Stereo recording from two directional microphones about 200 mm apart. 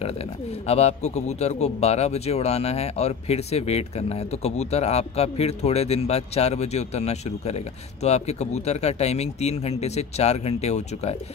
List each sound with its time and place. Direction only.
0.0 s speech: 30° left (ahead or behind)